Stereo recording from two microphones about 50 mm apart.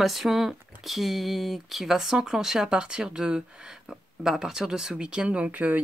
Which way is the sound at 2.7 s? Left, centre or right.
Centre.